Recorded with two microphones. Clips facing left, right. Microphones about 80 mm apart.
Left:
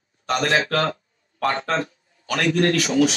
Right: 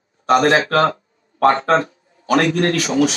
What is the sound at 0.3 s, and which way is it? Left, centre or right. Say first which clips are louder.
A man's voice: right 7 dB; right.